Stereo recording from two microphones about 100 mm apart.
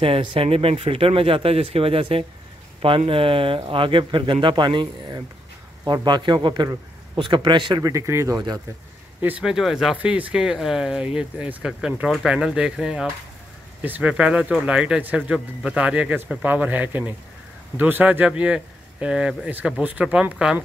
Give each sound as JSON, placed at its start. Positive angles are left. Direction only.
{"t": 0.0, "sound": "a man's voice", "side_deg": -65}
{"t": 7.8, "sound": "speech", "side_deg": -30}
{"t": 9.4, "sound": "speech", "side_deg": -5}
{"t": 9.9, "sound": "speech", "side_deg": -15}